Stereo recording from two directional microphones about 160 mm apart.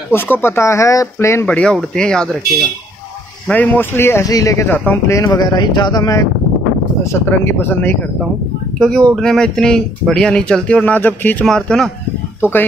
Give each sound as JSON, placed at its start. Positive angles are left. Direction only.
{"t": 0.1, "sound": "speech", "side_deg": 15}
{"t": 3.4, "sound": "speech", "side_deg": 10}